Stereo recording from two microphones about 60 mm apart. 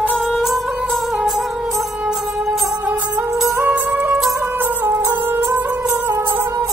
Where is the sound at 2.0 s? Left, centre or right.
Centre.